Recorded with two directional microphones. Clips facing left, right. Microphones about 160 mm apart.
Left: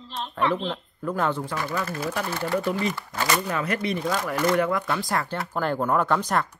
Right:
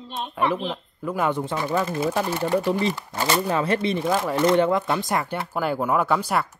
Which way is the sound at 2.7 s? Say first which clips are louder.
Right 3 dB; 25° right (ahead or behind).